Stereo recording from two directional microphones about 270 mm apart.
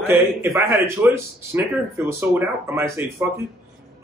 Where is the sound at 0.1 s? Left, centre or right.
Centre.